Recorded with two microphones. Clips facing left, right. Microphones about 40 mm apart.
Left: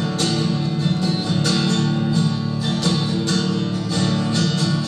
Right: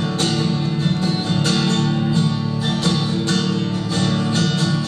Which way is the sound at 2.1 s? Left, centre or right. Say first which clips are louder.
Right 1 dB; right.